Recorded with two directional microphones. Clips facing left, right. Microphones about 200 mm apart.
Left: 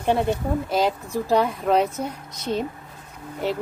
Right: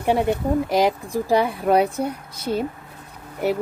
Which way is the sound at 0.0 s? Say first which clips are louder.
Right 2 dB; 10° right (ahead or behind).